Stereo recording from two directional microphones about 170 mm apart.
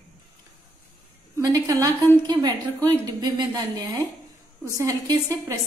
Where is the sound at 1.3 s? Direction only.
20° right (ahead or behind).